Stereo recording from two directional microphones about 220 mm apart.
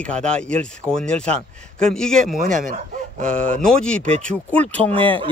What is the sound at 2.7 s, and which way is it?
Speech, 35° right (ahead or behind).